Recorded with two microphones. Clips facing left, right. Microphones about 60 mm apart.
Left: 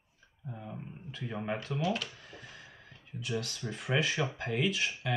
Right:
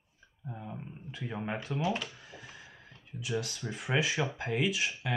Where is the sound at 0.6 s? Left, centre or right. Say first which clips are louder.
Even; centre.